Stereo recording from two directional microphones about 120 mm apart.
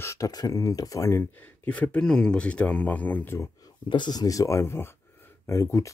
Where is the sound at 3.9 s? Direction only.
35° left (ahead or behind).